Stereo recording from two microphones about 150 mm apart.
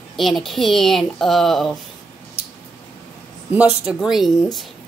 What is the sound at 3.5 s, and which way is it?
Speech, 10° right (ahead or behind).